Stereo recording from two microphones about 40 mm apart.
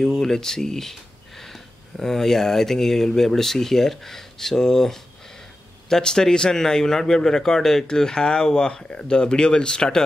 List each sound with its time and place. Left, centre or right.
0.0 s a man's voice: centre